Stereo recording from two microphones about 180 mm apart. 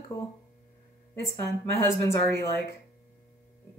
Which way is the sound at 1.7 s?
15° left (ahead or behind).